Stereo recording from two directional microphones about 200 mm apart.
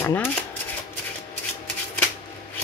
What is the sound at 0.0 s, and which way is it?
Speech, 10° left (ahead or behind).